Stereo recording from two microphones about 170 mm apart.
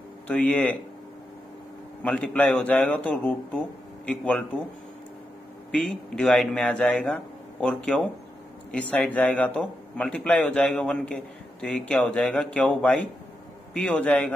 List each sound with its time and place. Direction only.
0.3 s a man's voice: 10° left (ahead or behind)
2.0 s a man's voice: 5° left (ahead or behind)
5.7 s a man's voice: 5° left (ahead or behind)